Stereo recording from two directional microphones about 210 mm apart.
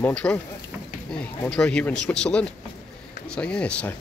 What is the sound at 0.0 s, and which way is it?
Speech, 5° left (ahead or behind).